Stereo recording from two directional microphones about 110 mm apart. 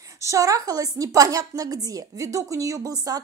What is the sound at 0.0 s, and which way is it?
A woman's voice, 30° right (ahead or behind).